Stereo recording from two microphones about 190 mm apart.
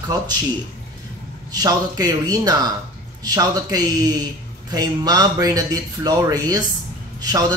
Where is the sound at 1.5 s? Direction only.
20° right (ahead or behind).